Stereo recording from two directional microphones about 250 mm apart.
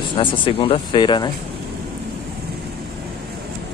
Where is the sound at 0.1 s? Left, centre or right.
Centre.